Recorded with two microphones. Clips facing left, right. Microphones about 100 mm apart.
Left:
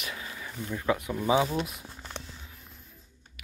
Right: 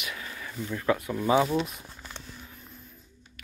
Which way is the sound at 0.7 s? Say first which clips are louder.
Right 1 dB; 15° left (ahead or behind).